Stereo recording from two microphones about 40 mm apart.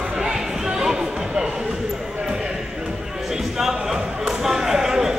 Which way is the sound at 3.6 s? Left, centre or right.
Centre.